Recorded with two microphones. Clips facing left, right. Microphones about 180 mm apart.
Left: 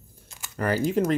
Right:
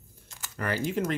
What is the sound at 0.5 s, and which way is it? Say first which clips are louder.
Speech: left 6 dB; 35° left (ahead or behind).